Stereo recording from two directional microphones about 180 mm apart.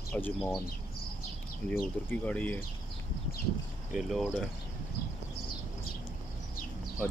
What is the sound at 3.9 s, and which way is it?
Speech, centre (ahead or behind).